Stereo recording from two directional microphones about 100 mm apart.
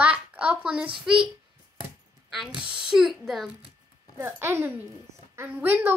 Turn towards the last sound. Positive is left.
turn(degrees=-20)  # may be behind; listen again after turning